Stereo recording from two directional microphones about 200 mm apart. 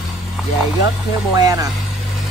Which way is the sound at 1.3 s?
20° right (ahead or behind).